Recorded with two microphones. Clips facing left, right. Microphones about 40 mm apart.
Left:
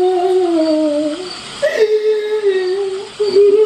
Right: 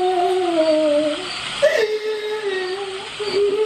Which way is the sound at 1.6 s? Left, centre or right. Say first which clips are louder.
Left 5 dB; centre.